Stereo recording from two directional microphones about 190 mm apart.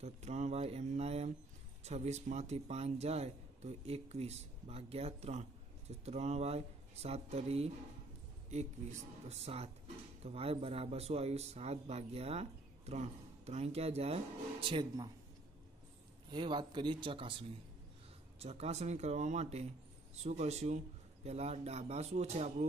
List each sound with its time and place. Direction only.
0.0 s speech: 35° right (ahead or behind)
9.3 s speech: 35° right (ahead or behind)
16.3 s speech: 25° right (ahead or behind)